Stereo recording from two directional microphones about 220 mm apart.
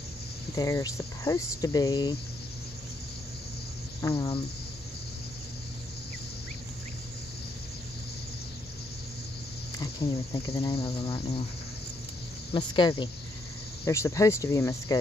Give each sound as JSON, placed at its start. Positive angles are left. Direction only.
{"t": 0.6, "sound": "speech", "side_deg": 15}
{"t": 4.0, "sound": "cricket", "side_deg": 20}
{"t": 9.8, "sound": "cricket", "side_deg": 20}
{"t": 12.5, "sound": "cricket", "side_deg": 20}
{"t": 13.8, "sound": "speech", "side_deg": 15}